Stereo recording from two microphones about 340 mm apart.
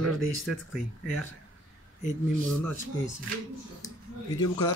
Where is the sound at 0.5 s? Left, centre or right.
Centre.